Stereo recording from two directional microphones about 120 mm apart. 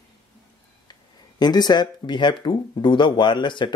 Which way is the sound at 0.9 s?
35° left (ahead or behind).